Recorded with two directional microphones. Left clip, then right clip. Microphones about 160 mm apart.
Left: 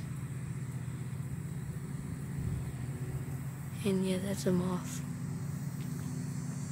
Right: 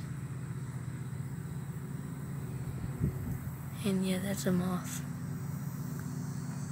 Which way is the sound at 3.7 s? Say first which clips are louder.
Left 1 dB; centre (ahead or behind).